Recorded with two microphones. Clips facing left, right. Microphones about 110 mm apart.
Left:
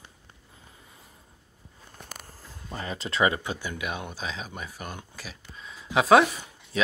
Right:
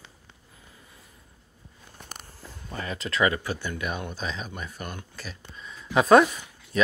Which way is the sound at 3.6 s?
10° left (ahead or behind).